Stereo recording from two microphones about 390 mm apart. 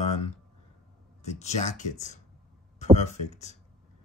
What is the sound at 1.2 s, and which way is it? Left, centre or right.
Speech, centre.